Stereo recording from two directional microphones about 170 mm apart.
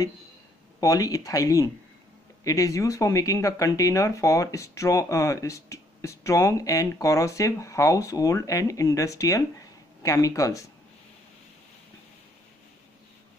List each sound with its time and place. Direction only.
0.7 s speech: 20° left (ahead or behind)